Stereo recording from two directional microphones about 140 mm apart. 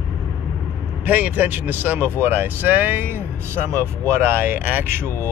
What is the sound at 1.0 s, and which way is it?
Speech, 10° right (ahead or behind).